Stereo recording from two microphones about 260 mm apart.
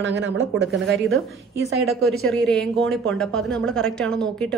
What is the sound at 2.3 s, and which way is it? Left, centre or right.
A woman's voice, centre.